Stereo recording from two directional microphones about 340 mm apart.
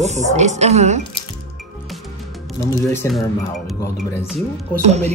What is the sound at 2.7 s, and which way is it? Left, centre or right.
Speech, centre.